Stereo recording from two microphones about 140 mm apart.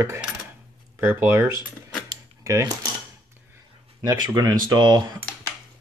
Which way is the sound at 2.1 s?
20° right (ahead or behind).